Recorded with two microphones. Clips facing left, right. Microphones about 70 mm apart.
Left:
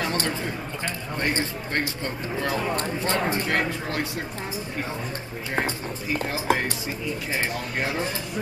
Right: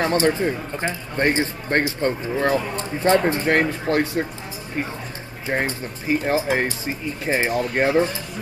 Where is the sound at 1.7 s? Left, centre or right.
Right.